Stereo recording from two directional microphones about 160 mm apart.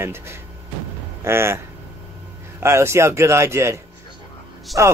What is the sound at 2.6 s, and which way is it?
Speech, 15° right (ahead or behind).